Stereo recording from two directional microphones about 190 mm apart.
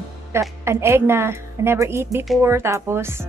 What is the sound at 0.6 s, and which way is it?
A woman's voice, 15° right (ahead or behind).